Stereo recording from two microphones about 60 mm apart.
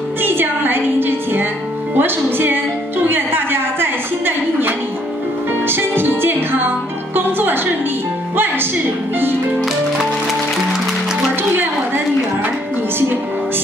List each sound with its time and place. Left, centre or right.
0.2 s music: right
3.1 s a sound: right
5.7 s music: right